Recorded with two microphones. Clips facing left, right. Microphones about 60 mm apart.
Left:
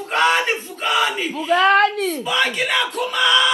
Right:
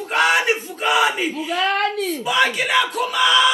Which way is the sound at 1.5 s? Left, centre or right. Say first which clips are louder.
Left 7 dB; left.